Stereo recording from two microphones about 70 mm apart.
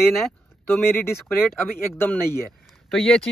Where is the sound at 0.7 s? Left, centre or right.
Left.